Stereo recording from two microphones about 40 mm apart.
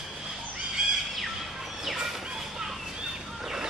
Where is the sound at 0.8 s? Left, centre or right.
Right.